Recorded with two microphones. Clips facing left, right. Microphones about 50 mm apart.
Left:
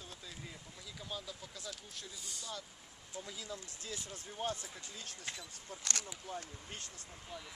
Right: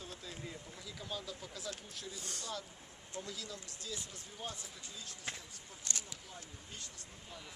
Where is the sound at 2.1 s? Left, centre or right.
Right.